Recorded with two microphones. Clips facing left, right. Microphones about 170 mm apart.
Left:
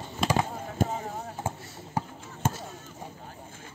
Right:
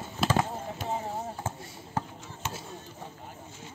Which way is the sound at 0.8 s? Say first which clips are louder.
Left 6 dB; 45° left (ahead or behind).